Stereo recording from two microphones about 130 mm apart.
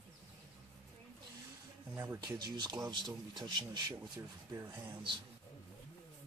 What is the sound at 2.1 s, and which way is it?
A man's voice, 30° right (ahead or behind).